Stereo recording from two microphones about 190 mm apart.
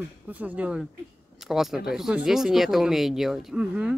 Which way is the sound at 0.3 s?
10° right (ahead or behind).